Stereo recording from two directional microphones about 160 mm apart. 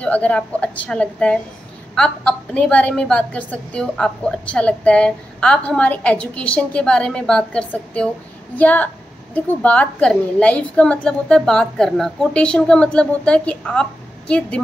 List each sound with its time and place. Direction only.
0.0 s a woman's voice: 10° left (ahead or behind)